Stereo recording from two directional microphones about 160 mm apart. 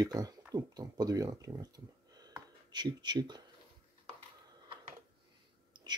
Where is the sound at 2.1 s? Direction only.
25° right (ahead or behind).